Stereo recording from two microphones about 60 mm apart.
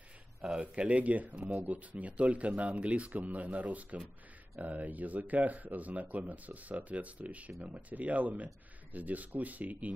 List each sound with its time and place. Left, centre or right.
0.6 s speech: right